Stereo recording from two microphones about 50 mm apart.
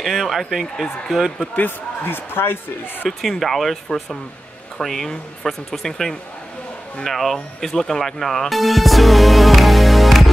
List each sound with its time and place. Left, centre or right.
0.0 s speech: centre
2.0 s speech: left
3.1 s speech: centre